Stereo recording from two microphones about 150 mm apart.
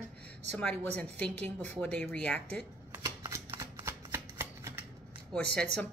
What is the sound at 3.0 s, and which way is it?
Shuffling cards, 25° right (ahead or behind).